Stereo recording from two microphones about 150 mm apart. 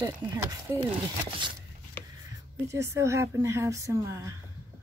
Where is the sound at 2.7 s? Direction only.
20° right (ahead or behind).